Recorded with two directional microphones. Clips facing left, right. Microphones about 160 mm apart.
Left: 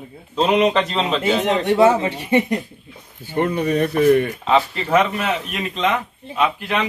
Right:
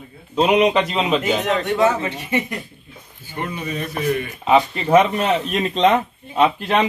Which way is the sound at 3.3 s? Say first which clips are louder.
Left 8 dB; 55° left (ahead or behind).